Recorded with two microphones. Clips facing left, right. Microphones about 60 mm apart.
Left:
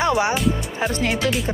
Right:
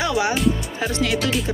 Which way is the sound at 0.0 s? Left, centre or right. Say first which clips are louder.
Left 2 dB; left.